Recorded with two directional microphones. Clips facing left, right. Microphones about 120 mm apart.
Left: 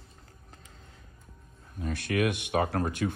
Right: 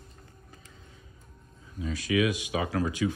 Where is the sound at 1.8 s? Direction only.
60° left (ahead or behind).